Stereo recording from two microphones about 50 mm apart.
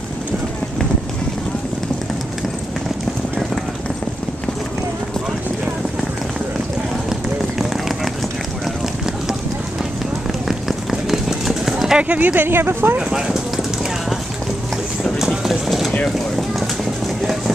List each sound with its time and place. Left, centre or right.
7.1 s run: centre
10.5 s run: centre
12.0 s speech: right
12.5 s speech: right
15.1 s a sound: centre